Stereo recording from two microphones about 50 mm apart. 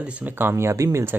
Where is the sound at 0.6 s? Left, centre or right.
Right.